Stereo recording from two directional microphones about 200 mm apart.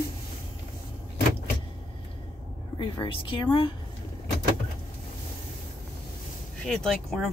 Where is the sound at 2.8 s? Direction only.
25° left (ahead or behind).